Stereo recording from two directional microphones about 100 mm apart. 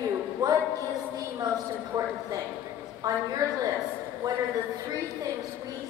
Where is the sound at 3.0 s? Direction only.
35° right (ahead or behind).